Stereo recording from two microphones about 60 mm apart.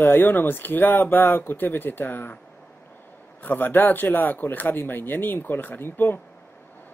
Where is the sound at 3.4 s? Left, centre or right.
Left.